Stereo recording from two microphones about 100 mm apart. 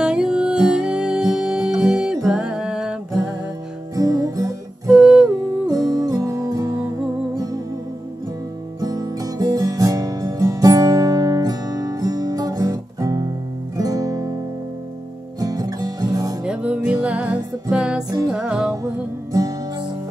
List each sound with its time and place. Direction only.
0.0 s music: 5° right (ahead or behind)
3.9 s music: 35° right (ahead or behind)
4.9 s humming: 5° right (ahead or behind)
5.7 s music: 35° right (ahead or behind)
8.8 s music: 40° right (ahead or behind)
13.7 s guitar: 40° right (ahead or behind)
15.4 s music: 40° right (ahead or behind)
16.4 s music: 10° right (ahead or behind)